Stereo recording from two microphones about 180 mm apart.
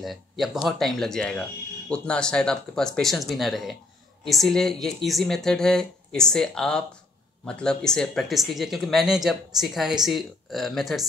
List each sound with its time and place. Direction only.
0.0 s speech: centre (ahead or behind)